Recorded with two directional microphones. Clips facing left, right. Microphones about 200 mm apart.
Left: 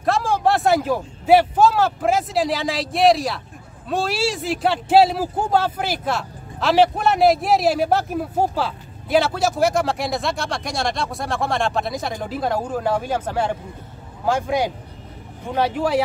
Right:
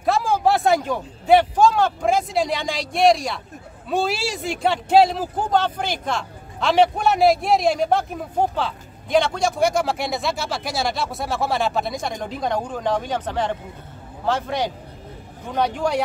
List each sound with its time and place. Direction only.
0.0 s a man's voice: centre (ahead or behind)